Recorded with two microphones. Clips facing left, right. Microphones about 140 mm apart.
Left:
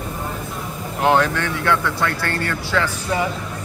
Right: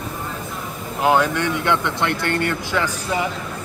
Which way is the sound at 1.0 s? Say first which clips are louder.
Even; 10° right (ahead or behind).